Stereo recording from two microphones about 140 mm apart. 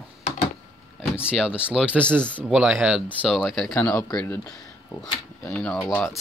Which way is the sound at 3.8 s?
25° left (ahead or behind).